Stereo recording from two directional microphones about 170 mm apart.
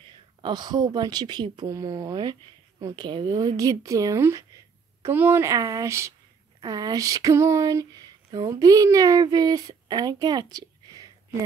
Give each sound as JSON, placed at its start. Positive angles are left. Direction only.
{"t": 0.4, "sound": "speech", "side_deg": -25}